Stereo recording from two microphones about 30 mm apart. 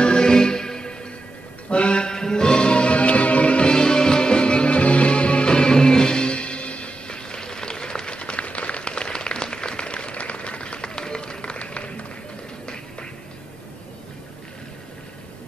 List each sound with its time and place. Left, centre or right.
0.0 s music: left
1.7 s music: left
2.0 s music: left
5.5 s music: left
7.1 s applause: left
11.5 s a sound: left